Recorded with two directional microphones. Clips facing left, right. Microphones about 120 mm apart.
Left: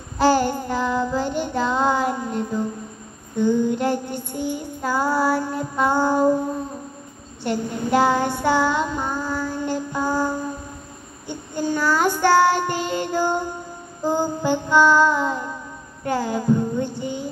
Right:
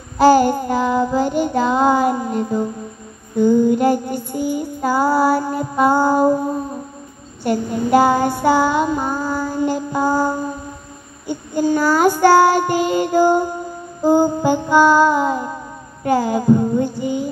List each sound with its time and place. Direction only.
0.2 s child singing: 10° right (ahead or behind)
5.5 s female singing: 10° right (ahead or behind)
7.4 s child singing: 5° right (ahead or behind)
10.0 s mantra: 40° right (ahead or behind)
11.2 s child singing: 10° right (ahead or behind)
14.4 s music: 10° right (ahead or behind)
16.0 s child singing: 10° right (ahead or behind)